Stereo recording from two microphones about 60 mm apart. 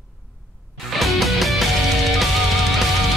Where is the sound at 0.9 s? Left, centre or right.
Centre.